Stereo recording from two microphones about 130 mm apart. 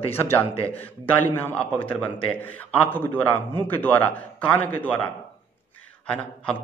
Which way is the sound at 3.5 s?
15° left (ahead or behind).